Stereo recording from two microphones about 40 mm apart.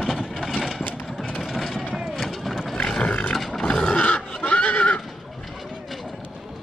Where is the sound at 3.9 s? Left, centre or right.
Left.